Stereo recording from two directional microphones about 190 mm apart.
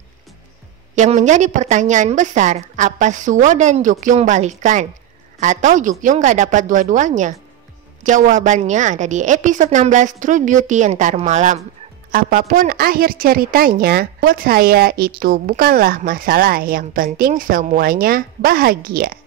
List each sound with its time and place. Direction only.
0.9 s a woman's voice: 40° right (ahead or behind)